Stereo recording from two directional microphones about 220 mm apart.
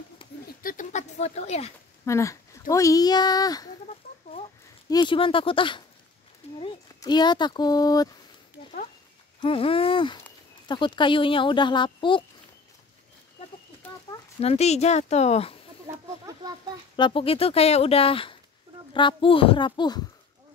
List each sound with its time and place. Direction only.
0.6 s a sound: 40° left (ahead or behind)
2.0 s speech: 15° left (ahead or behind)
4.8 s speech: 20° left (ahead or behind)
9.4 s speech: 25° left (ahead or behind)
14.4 s speech: 30° left (ahead or behind)
16.9 s speech: 20° left (ahead or behind)